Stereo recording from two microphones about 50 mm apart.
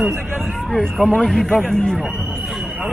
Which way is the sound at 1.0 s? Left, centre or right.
Left.